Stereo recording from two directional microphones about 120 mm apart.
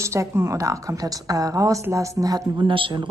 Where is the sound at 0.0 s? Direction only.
25° right (ahead or behind).